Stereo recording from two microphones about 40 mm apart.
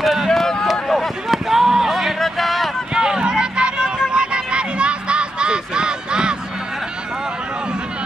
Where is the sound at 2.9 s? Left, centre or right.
Centre.